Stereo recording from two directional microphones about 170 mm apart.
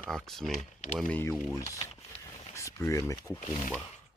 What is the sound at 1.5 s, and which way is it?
Speech, 20° left (ahead or behind).